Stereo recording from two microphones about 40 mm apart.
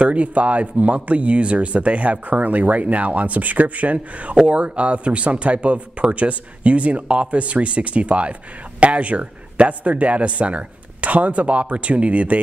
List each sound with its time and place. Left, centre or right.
0.0 s speech: right